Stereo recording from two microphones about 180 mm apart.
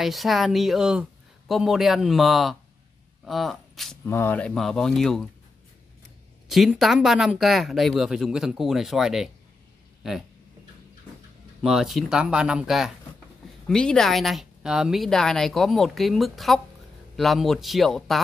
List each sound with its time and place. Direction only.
0.0 s speech: centre (ahead or behind)
4.1 s speech: 10° left (ahead or behind)
6.5 s speech: centre (ahead or behind)
11.6 s speech: centre (ahead or behind)